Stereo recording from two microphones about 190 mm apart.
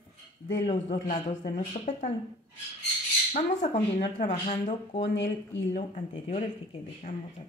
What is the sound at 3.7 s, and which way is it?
Speech, 45° left (ahead or behind).